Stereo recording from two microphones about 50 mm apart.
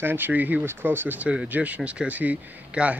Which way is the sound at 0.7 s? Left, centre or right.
Right.